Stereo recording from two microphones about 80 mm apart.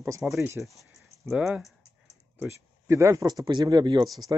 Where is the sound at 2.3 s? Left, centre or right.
Right.